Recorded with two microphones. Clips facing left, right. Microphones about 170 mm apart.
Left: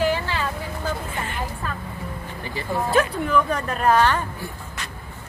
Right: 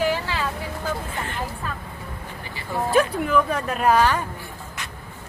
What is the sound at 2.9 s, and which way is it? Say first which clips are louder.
A woman's voice: right 1 dB; 10° right (ahead or behind).